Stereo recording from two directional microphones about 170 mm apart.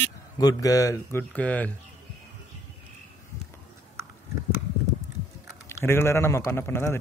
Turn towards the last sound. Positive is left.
turn(degrees=15)  # may be behind; listen again after turning